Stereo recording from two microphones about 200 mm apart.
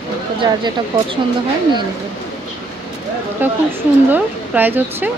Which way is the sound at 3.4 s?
10° right (ahead or behind).